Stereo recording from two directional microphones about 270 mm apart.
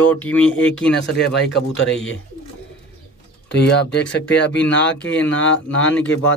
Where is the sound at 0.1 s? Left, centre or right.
Centre.